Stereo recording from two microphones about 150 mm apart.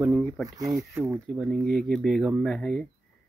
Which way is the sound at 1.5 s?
Centre (ahead or behind).